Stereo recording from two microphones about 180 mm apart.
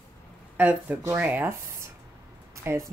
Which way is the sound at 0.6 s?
10° right (ahead or behind).